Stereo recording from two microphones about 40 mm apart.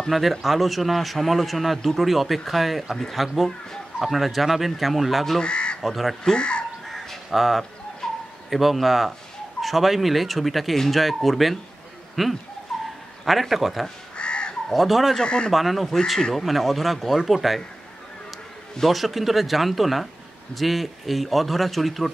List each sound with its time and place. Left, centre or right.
0.4 s speech: centre
5.4 s crow: left
5.8 s speech: centre
6.3 s speech: left
6.9 s crow: centre
8.0 s bird: centre
8.5 s speech: centre
12.7 s dog: centre
13.2 s speech: centre
14.1 s crow: left
14.7 s speech: centre
15.2 s speech: left
15.5 s speech: centre
18.9 s speech: centre